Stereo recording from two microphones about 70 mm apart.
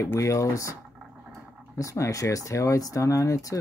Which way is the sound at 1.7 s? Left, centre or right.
Left.